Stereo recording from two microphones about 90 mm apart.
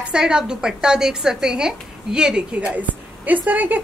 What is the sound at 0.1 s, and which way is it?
A woman's voice, 10° right (ahead or behind).